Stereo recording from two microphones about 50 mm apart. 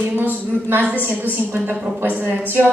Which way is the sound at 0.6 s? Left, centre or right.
Right.